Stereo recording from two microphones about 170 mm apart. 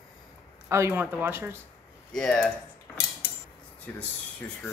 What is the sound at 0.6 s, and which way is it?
Speech, 15° right (ahead or behind).